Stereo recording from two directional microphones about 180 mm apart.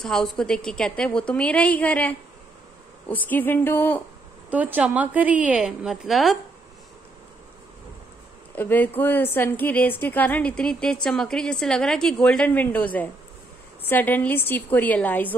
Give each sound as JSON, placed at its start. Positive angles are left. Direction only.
{"t": 0.0, "sound": "a woman's voice", "side_deg": 0}
{"t": 4.5, "sound": "a woman's voice", "side_deg": -10}
{"t": 8.5, "sound": "a woman's voice", "side_deg": 10}